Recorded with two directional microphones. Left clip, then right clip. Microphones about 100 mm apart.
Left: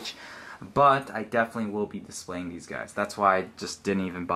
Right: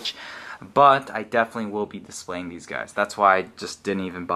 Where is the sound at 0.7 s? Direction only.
15° right (ahead or behind).